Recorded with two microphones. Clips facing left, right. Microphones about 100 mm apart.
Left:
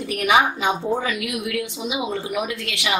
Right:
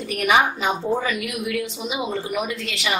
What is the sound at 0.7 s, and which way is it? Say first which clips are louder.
A woman's voice: even; centre (ahead or behind).